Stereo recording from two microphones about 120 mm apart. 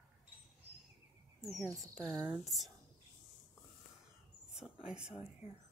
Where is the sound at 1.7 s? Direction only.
30° right (ahead or behind).